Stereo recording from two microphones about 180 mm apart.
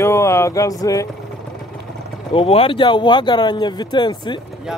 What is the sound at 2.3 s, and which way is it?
Speech, 30° left (ahead or behind).